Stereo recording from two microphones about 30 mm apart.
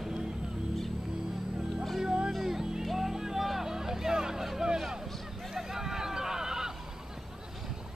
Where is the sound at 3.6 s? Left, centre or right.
Centre.